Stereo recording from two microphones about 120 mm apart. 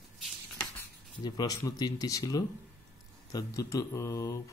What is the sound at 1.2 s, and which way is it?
Speech, 35° left (ahead or behind).